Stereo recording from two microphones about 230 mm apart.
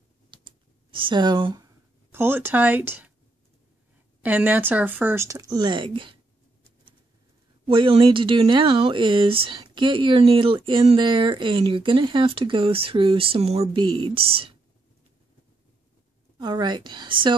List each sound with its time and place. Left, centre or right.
0.3 s computer keyboard: right
2.1 s speech: centre
4.2 s speech: centre
7.6 s speech: right
16.3 s speech: centre